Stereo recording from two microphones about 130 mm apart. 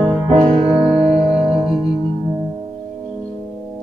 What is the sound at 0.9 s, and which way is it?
Music, 5° right (ahead or behind).